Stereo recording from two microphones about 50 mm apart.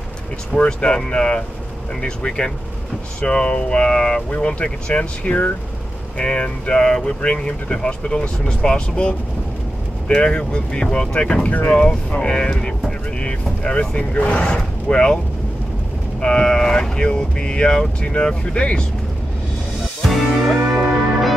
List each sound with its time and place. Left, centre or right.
0.5 s speech: left
16.2 s speech: centre
20.0 s music: centre